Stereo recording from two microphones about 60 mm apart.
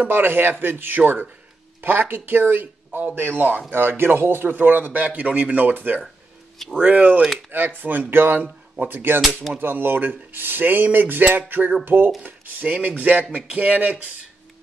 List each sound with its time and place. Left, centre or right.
0.0 s a man's voice: right
9.2 s music: centre
9.6 s a man's voice: right